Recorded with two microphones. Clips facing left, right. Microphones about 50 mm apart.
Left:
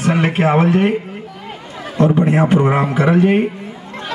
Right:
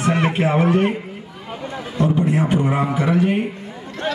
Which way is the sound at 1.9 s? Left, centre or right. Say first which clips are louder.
Left 5 dB; left.